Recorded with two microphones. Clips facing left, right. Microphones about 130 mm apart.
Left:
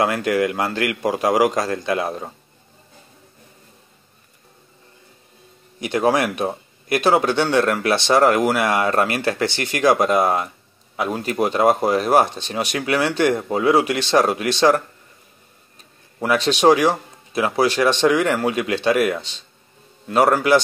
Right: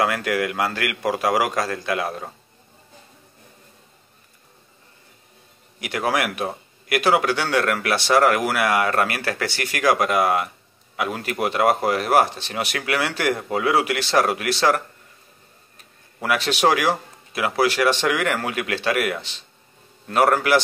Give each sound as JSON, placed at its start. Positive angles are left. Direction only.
{"t": 0.0, "sound": "speech", "side_deg": 25}
{"t": 5.8, "sound": "speech", "side_deg": 25}
{"t": 16.2, "sound": "speech", "side_deg": 20}